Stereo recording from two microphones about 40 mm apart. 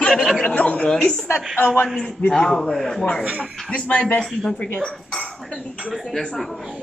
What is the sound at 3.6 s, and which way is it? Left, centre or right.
Speech, left.